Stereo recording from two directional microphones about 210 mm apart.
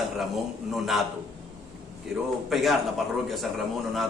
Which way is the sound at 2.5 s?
Centre (ahead or behind).